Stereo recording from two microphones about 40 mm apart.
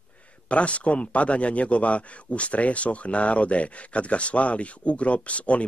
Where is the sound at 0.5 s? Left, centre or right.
Left.